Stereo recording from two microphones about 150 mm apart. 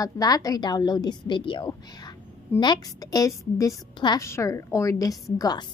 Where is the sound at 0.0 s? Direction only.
25° left (ahead or behind).